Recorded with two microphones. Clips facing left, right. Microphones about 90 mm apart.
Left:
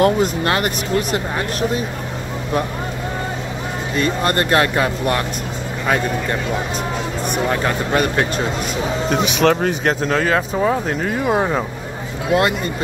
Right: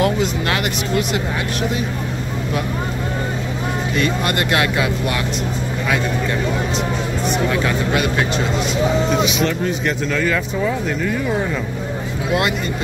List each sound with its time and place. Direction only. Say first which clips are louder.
0.0 s speech: left 3 dB; 40° left (ahead or behind)
3.9 s speech: left 3 dB; 35° left (ahead or behind)
7.5 s speech: even; 40° left (ahead or behind)
9.1 s speech: left 2 dB; 75° left (ahead or behind)
9.8 s speech: left 3 dB; 45° left (ahead or behind)